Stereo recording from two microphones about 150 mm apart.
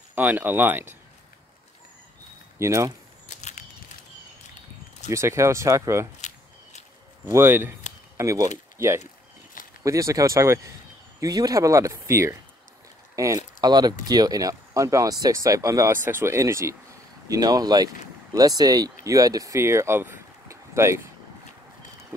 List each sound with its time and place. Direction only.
0.1 s speech: 10° right (ahead or behind)
2.6 s speech: 20° right (ahead or behind)
3.3 s a sound: 50° left (ahead or behind)
5.1 s speech: 20° right (ahead or behind)
7.2 s speech: 15° right (ahead or behind)
9.0 s a sound: 65° left (ahead or behind)
9.8 s speech: 20° right (ahead or behind)